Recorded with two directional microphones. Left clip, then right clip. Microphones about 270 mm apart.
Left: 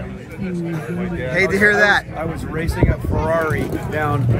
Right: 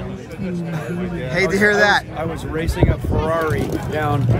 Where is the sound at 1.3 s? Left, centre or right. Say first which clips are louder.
Left 1 dB; centre.